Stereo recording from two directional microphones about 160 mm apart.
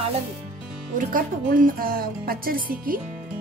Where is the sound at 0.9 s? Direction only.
60° right (ahead or behind).